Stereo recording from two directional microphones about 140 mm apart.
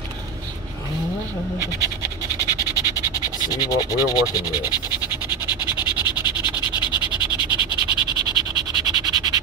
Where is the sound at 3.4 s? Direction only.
25° left (ahead or behind).